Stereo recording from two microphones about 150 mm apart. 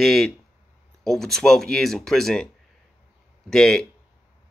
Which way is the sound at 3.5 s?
5° left (ahead or behind).